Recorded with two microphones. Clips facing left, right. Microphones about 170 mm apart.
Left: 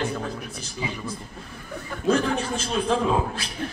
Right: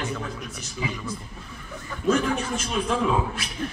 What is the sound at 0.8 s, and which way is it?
Speech, 25° left (ahead or behind).